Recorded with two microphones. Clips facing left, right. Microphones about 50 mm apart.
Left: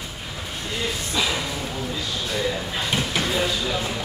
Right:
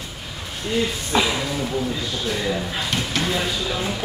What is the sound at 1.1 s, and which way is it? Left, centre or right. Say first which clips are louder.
Speech: right 6 dB; right.